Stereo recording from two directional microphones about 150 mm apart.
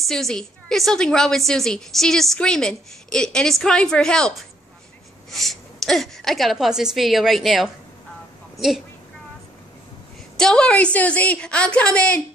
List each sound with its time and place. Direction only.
0.1 s a woman's voice: 5° left (ahead or behind)
5.3 s a woman's voice: centre (ahead or behind)
10.3 s a woman's voice: 5° left (ahead or behind)